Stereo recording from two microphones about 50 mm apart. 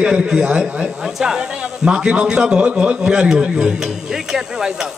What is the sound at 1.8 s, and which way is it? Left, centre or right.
A man's voice, right.